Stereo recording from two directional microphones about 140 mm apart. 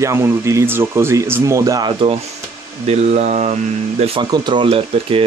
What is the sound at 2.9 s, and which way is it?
Speech, 50° right (ahead or behind).